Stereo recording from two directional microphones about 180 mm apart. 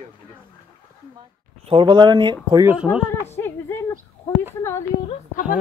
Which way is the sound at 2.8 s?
10° left (ahead or behind).